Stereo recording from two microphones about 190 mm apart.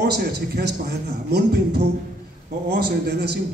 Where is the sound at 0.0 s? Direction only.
60° right (ahead or behind).